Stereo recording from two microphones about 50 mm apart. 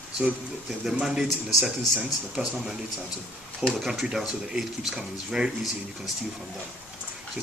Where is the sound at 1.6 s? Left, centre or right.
Right.